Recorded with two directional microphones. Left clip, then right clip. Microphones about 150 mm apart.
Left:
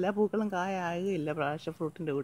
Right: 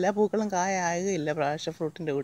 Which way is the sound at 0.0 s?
25° right (ahead or behind).